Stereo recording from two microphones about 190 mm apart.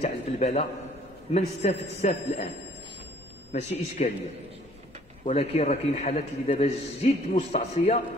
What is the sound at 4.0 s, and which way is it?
Speech, 35° left (ahead or behind).